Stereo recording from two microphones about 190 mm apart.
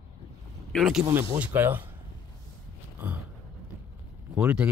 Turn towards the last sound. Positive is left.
turn(degrees=-5)  # may be behind; listen again after turning